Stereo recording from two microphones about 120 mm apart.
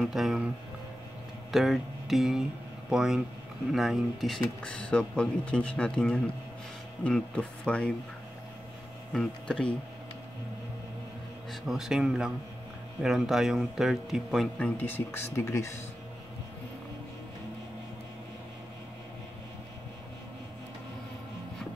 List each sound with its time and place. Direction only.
0.0 s speech: centre (ahead or behind)
1.5 s speech: centre (ahead or behind)
9.1 s speech: 5° left (ahead or behind)
11.6 s speech: 5° right (ahead or behind)
14.6 s speech: 15° left (ahead or behind)